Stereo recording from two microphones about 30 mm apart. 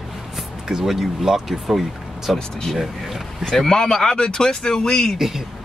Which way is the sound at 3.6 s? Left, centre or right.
Left.